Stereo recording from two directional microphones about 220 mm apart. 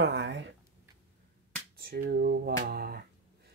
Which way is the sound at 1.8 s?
45° right (ahead or behind).